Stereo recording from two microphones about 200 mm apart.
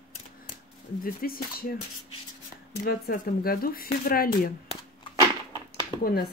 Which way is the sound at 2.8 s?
50° left (ahead or behind).